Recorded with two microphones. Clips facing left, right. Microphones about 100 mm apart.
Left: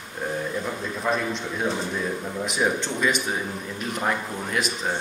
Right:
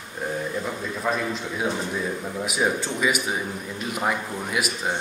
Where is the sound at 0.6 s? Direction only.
Centre (ahead or behind).